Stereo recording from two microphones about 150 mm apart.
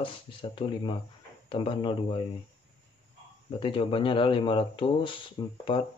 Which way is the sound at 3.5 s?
35° left (ahead or behind).